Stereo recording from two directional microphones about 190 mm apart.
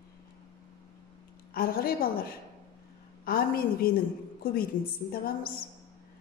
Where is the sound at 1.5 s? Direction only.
50° left (ahead or behind).